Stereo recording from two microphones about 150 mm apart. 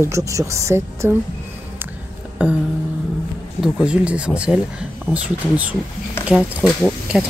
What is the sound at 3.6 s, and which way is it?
Speech, 5° right (ahead or behind).